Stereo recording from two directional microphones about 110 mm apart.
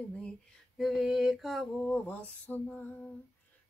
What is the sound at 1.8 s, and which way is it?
Female singing, 15° left (ahead or behind).